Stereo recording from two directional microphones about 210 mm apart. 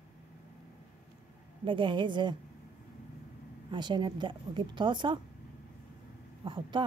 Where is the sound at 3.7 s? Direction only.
20° right (ahead or behind).